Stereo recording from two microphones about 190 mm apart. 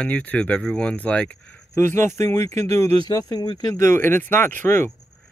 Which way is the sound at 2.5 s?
35° right (ahead or behind).